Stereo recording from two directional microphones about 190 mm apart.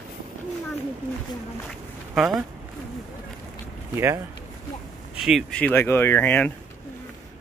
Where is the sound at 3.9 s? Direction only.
15° right (ahead or behind).